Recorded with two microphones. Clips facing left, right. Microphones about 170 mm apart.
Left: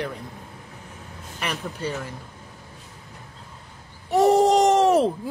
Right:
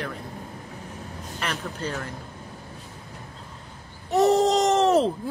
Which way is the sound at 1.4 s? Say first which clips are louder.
Left 1 dB; 10° left (ahead or behind).